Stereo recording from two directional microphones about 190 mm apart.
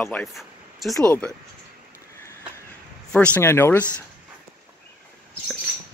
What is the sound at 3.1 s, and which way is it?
Speech, 5° left (ahead or behind).